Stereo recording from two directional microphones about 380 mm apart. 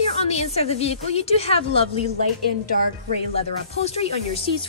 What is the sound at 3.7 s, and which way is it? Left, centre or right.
Speech, centre.